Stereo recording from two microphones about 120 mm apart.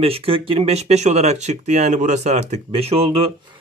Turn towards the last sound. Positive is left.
turn(degrees=-55)  # may be behind; listen again after turning